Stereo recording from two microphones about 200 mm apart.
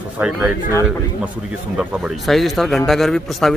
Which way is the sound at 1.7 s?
Centre (ahead or behind).